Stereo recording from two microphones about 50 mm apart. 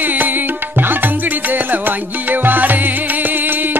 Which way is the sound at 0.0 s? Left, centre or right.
Right.